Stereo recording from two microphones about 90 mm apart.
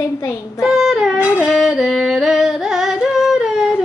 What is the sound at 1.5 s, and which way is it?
Singing, 5° right (ahead or behind).